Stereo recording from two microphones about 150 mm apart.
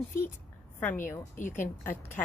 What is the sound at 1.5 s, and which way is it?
Speech, 15° left (ahead or behind).